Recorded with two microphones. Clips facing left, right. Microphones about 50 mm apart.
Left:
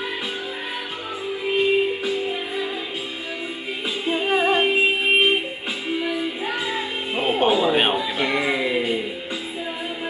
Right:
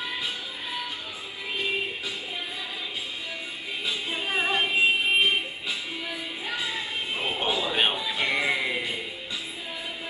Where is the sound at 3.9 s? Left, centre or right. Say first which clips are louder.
Left 9 dB; left.